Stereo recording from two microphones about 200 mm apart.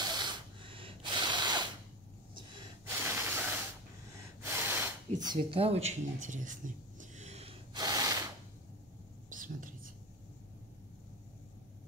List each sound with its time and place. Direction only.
0.0 s a sound: 20° right (ahead or behind)
2.8 s gasp: 10° right (ahead or behind)
5.2 s speech: 25° right (ahead or behind)
7.7 s gasp: 20° right (ahead or behind)
9.3 s whispering: 45° right (ahead or behind)